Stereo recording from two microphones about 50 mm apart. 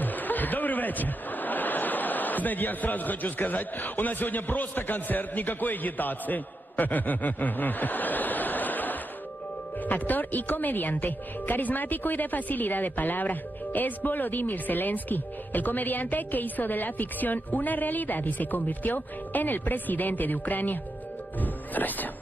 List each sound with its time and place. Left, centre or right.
0.0 s speech: left